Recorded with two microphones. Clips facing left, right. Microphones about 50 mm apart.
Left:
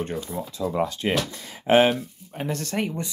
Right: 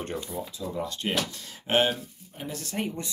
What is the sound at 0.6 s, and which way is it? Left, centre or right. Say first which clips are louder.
Speech: left 10 dB; left.